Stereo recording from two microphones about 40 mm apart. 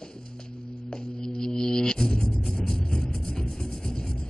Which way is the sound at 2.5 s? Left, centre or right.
Centre.